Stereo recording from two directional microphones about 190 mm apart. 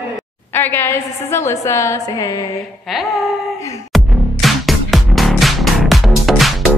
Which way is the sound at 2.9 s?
Centre (ahead or behind).